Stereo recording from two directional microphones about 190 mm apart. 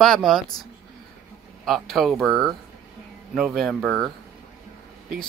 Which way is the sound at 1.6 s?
Centre (ahead or behind).